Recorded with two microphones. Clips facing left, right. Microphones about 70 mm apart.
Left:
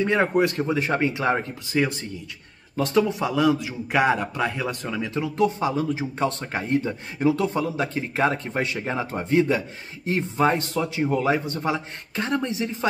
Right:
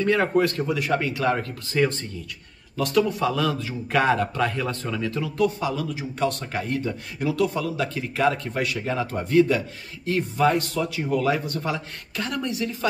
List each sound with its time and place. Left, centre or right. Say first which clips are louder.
0.0 s a man's voice: even; left